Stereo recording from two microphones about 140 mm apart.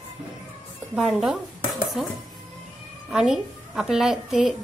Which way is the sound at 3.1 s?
5° right (ahead or behind).